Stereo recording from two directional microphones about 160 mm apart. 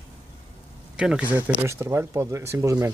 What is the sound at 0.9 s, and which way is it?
Speech, 5° right (ahead or behind).